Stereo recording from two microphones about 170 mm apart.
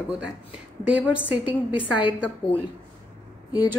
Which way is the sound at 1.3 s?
10° right (ahead or behind).